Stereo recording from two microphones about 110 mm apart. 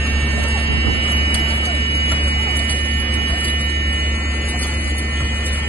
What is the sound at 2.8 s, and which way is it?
Music, 15° right (ahead or behind).